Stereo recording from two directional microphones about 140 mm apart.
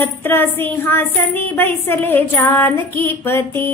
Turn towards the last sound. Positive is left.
turn(degrees=15)  # may be behind; listen again after turning